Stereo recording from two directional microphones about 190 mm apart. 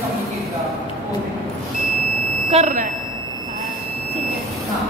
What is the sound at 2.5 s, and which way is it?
Speech, 40° right (ahead or behind).